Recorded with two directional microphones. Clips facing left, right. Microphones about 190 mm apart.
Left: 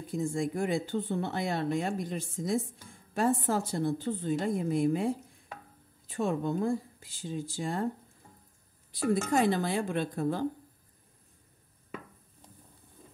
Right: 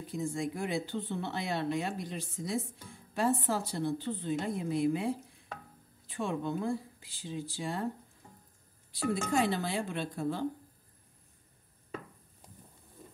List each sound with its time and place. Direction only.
0.1 s speech: 50° left (ahead or behind)
9.1 s speech: 50° left (ahead or behind)